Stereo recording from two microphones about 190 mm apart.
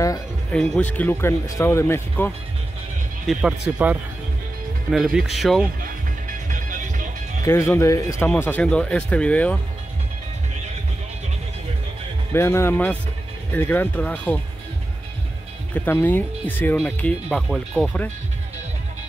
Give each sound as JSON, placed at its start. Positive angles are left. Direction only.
{"t": 0.5, "sound": "speech", "side_deg": 5}
{"t": 3.3, "sound": "speech", "side_deg": -5}
{"t": 6.5, "sound": "music", "side_deg": -45}
{"t": 7.4, "sound": "speech", "side_deg": 15}
{"t": 12.3, "sound": "speech", "side_deg": 15}
{"t": 15.7, "sound": "speech", "side_deg": 10}